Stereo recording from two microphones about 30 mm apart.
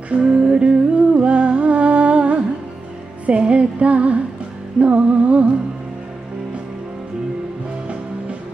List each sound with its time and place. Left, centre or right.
0.1 s music: right